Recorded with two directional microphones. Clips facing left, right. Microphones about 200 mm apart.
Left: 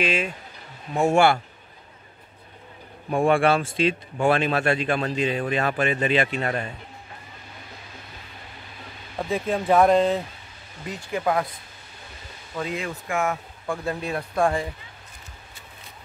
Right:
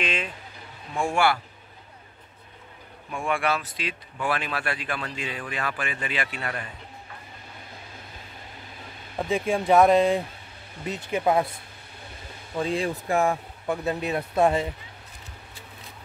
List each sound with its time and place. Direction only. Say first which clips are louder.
0.0 s speech: left 5 dB; 10° left (ahead or behind)
1.0 s speech: left 5 dB; 25° left (ahead or behind)
3.1 s speech: left 7 dB; 35° left (ahead or behind)
9.2 s speech: even; 5° right (ahead or behind)
10.9 s speech: right 1 dB; 20° right (ahead or behind)
12.5 s speech: right 3 dB; 30° right (ahead or behind)
13.7 s speech: right 1 dB; 20° right (ahead or behind)